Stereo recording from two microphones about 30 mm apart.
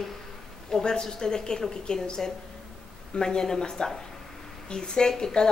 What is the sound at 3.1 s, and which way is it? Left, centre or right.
A woman's voice, centre.